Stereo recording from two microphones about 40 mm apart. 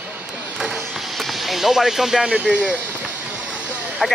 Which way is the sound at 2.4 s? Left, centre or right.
Right.